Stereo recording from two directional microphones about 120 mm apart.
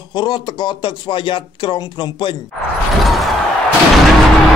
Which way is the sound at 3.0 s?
Centre (ahead or behind).